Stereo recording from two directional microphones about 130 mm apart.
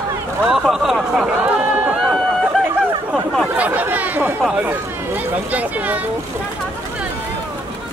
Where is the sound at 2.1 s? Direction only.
Centre (ahead or behind).